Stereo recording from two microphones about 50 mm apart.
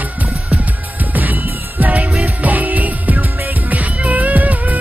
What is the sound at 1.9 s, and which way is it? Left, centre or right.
Music, centre.